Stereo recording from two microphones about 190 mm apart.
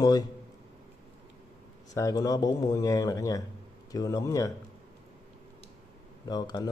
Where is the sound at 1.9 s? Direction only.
20° left (ahead or behind).